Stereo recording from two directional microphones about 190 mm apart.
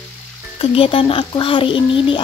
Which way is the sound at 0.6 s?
30° left (ahead or behind).